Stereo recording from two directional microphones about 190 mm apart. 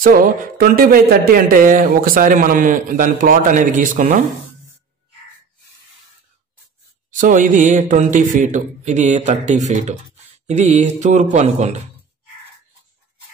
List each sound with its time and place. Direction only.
0.0 s speech: 45° right (ahead or behind)
7.1 s speech: 45° right (ahead or behind)